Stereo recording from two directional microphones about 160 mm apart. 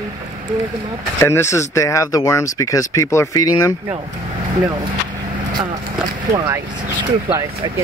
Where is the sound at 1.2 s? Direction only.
15° left (ahead or behind).